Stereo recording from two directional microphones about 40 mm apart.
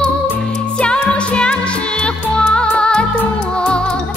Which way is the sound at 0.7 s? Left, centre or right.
Left.